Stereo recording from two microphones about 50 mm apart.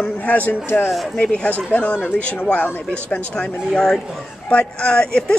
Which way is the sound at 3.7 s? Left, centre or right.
Centre.